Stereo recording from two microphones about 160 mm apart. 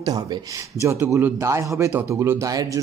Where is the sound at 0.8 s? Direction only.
15° right (ahead or behind).